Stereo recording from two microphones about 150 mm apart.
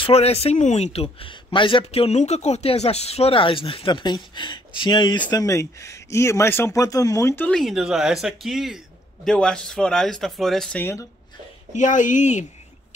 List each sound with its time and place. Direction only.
0.0 s speech: 45° left (ahead or behind); by 7.5 s 15° left (ahead or behind)
7.5 s a man's voice: centre (ahead or behind)
10.8 s speech: 15° left (ahead or behind)
11.7 s a woman's voice: 55° left (ahead or behind)